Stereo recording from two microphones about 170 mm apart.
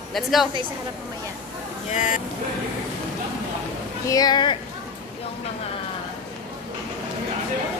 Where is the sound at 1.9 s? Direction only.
45° left (ahead or behind).